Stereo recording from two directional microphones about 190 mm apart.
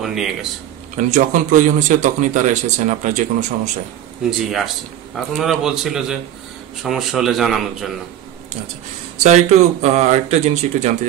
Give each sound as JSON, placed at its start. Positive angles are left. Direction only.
{"t": 0.0, "sound": "speech", "side_deg": 0}
{"t": 0.9, "sound": "speech", "side_deg": -40}
{"t": 4.3, "sound": "speech", "side_deg": 0}
{"t": 9.2, "sound": "speech", "side_deg": -35}